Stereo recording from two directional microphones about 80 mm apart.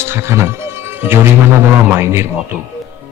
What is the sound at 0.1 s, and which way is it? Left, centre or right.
Music, right.